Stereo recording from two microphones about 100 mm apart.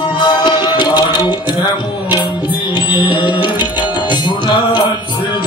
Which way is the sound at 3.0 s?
55° left (ahead or behind).